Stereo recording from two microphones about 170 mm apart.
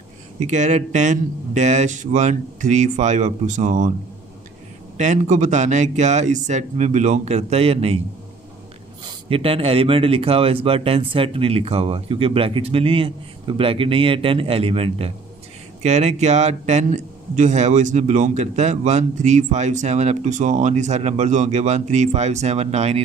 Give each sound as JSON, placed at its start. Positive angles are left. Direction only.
{"t": 0.5, "sound": "a man's voice", "side_deg": -45}
{"t": 4.9, "sound": "a man's voice", "side_deg": -45}
{"t": 9.0, "sound": "a man's voice", "side_deg": -35}